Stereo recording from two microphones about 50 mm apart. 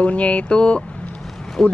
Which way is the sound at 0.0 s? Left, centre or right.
Left.